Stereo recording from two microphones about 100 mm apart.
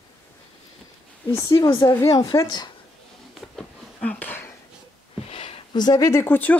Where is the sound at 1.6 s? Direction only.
40° left (ahead or behind).